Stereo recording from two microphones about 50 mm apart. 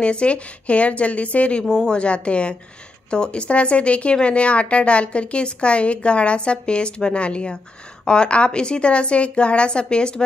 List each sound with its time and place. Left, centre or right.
0.0 s speech: left
1.6 s speech: centre